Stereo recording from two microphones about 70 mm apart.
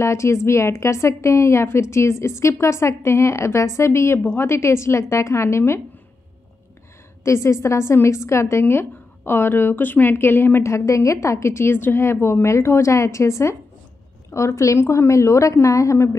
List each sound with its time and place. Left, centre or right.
0.0 s a woman's voice: left
4.2 s a woman's voice: left
4.5 s a woman's voice: left
7.2 s a woman's voice: left